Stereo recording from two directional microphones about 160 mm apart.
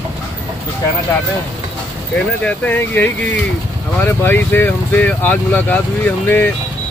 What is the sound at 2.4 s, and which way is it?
Speech, 10° left (ahead or behind).